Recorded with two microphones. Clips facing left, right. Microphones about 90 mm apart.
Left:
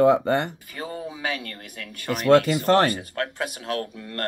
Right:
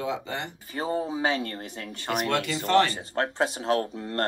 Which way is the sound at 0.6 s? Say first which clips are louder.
Right 4 dB; 25° right (ahead or behind).